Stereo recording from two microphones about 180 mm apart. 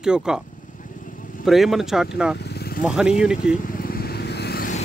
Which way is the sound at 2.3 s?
65° left (ahead or behind).